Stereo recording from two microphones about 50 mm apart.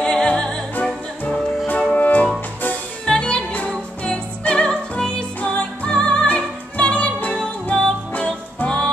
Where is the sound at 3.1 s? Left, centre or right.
Centre.